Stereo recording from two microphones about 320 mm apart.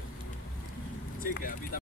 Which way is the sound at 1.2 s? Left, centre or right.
Left.